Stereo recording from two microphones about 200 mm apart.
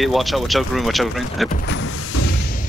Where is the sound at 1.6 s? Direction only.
65° left (ahead or behind).